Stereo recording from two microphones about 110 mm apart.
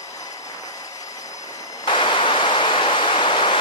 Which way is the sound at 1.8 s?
45° left (ahead or behind).